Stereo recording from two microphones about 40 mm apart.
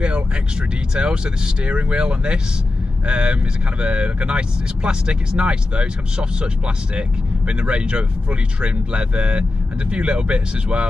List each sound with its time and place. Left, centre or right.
0.0 s speech: right